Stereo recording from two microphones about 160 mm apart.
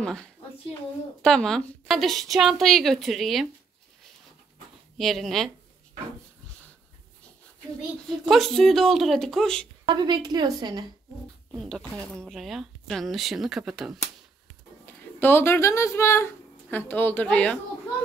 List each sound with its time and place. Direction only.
0.0 s a woman's voice: 5° left (ahead or behind)
4.9 s a woman's voice: centre (ahead or behind)
8.3 s a woman's voice: centre (ahead or behind)
9.8 s a woman's voice: 25° right (ahead or behind)
11.5 s a woman's voice: centre (ahead or behind)
14.9 s a woman's voice: 10° left (ahead or behind)